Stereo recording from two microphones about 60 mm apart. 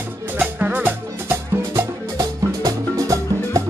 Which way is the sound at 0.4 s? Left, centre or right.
Right.